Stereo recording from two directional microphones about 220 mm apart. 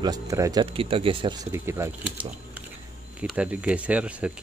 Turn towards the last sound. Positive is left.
turn(degrees=-5)  # may be behind; listen again after turning